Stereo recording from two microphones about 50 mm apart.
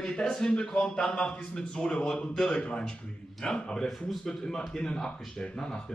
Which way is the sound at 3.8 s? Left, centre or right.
Centre.